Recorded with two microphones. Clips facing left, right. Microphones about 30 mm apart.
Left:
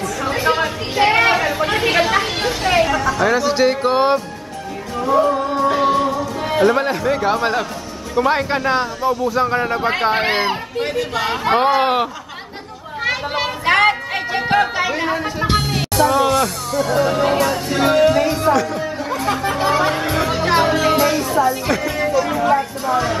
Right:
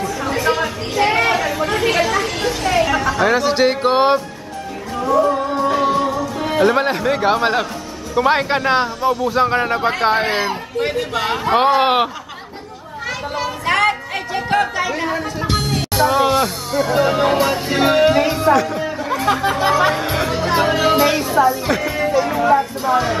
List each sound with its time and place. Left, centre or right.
0.4 s a sound: centre
2.9 s speech: centre
5.3 s music: centre
6.6 s a man's voice: centre
10.2 s speech: left
10.8 s speech: centre
13.0 s a sound: left
13.7 s chatter: centre
15.9 s a man's voice: centre
18.9 s music: centre
21.5 s speech: centre
22.2 s a sound: centre